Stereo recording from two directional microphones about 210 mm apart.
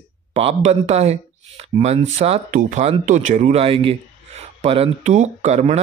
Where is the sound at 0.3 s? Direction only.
30° right (ahead or behind).